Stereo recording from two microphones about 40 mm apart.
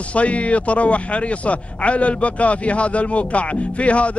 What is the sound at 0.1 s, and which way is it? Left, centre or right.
A man's voice, left.